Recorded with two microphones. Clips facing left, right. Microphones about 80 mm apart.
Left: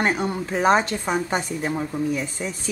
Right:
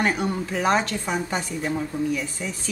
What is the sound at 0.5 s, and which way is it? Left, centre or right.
Speech, left.